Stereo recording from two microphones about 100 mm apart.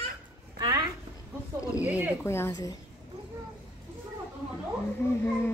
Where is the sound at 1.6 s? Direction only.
15° right (ahead or behind).